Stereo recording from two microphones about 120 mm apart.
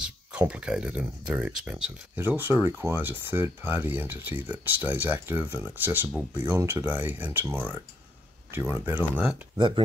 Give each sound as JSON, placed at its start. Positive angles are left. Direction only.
{"t": 0.0, "sound": "speech", "side_deg": -10}
{"t": 2.1, "sound": "speech", "side_deg": -15}
{"t": 9.6, "sound": "speech", "side_deg": -45}